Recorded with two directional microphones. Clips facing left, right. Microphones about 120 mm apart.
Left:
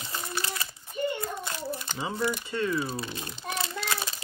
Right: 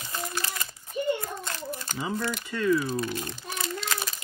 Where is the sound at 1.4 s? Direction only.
20° left (ahead or behind).